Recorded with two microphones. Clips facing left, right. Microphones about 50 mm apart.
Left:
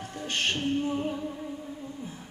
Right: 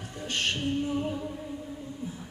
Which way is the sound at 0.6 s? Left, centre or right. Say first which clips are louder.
Left 1 dB; left.